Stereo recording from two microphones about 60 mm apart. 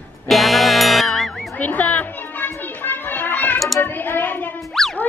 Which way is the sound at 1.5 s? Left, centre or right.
Left.